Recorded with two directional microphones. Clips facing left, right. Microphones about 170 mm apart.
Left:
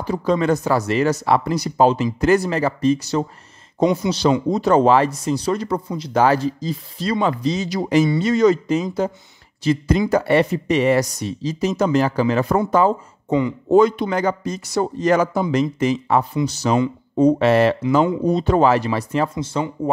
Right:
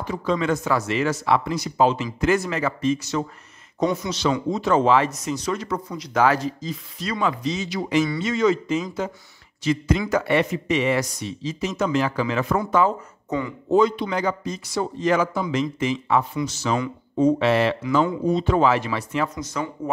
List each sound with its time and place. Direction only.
0.0 s speech: 35° left (ahead or behind)
13.7 s speech: 50° left (ahead or behind); by 19.7 s 25° left (ahead or behind)